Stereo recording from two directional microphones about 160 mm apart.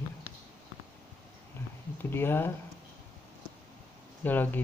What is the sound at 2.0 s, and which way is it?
Speech, 15° left (ahead or behind).